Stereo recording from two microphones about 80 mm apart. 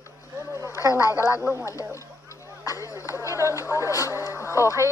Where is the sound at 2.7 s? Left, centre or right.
Left.